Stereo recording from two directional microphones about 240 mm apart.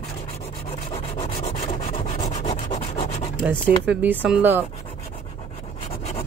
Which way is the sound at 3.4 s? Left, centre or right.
Centre.